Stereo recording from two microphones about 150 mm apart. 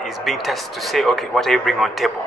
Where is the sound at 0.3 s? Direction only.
Centre (ahead or behind).